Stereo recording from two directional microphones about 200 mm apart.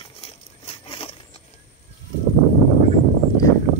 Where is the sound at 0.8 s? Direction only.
25° left (ahead or behind).